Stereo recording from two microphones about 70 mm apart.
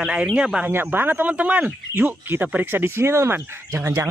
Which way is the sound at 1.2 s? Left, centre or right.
Centre.